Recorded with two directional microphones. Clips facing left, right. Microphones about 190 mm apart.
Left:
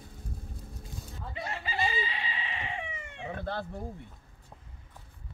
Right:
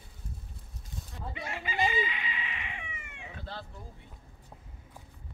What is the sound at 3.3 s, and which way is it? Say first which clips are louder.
Speech: left 9 dB; 55° left (ahead or behind).